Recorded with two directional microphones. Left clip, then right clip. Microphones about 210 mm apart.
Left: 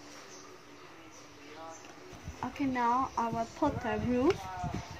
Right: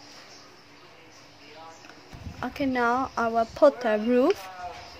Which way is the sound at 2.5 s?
40° right (ahead or behind).